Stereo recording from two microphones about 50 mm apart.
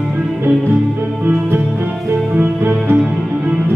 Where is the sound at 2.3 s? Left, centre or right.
Right.